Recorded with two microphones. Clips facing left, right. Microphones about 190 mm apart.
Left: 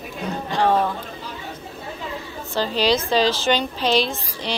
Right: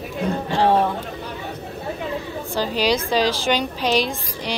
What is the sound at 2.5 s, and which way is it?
A woman's voice, 10° right (ahead or behind).